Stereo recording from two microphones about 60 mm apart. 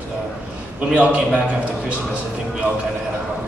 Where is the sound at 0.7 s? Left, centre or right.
Right.